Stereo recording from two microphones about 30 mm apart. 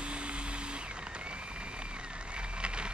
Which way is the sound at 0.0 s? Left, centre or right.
Right.